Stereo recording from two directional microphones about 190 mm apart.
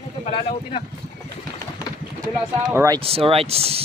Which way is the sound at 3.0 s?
30° right (ahead or behind).